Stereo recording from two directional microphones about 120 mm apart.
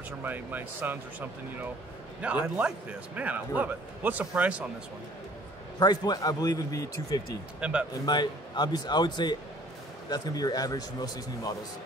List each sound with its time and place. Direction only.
0.2 s speech: 15° right (ahead or behind)
2.5 s speech: 10° right (ahead or behind)
5.8 s a man's voice: 35° left (ahead or behind)